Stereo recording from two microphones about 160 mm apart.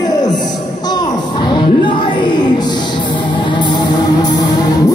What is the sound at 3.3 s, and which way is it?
Music, 30° left (ahead or behind).